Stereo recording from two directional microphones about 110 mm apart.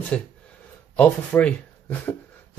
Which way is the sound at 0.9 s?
15° left (ahead or behind).